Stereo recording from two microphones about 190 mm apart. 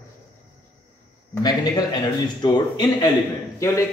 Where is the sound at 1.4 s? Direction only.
20° left (ahead or behind).